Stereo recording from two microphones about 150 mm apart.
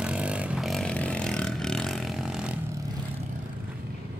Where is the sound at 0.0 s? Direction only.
5° right (ahead or behind).